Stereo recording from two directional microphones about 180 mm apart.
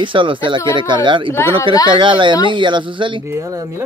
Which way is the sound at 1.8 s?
25° right (ahead or behind).